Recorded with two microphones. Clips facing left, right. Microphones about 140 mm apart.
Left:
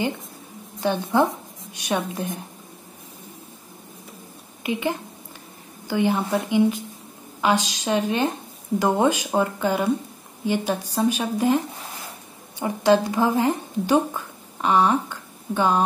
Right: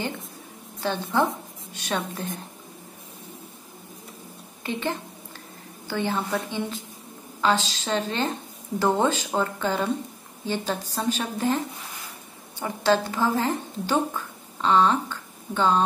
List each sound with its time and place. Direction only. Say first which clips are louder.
0.7 s a woman's voice: left 4 dB; 15° left (ahead or behind)
4.6 s a woman's voice: left 3 dB; 10° left (ahead or behind)